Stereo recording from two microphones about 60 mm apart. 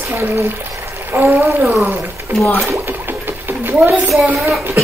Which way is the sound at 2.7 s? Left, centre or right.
Right.